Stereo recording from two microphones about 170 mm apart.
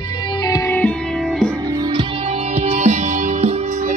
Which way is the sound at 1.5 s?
20° right (ahead or behind).